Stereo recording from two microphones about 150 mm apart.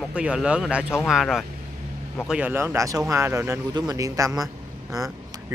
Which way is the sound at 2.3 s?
10° right (ahead or behind).